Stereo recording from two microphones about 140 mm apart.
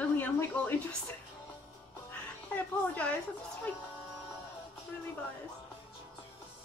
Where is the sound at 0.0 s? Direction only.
15° left (ahead or behind).